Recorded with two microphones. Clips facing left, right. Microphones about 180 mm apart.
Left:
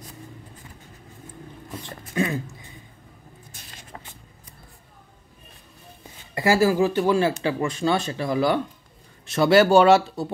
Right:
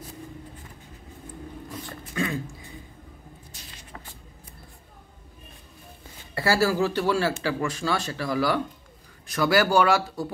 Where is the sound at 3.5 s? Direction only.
50° left (ahead or behind).